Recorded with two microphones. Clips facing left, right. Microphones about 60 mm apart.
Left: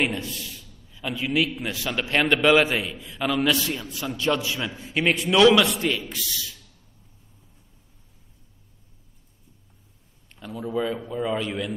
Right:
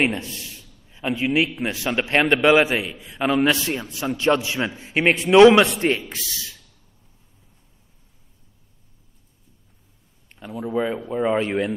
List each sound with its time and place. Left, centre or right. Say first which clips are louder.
0.3 s a man's voice: left 1 dB; right
10.4 s speech: right 3 dB; right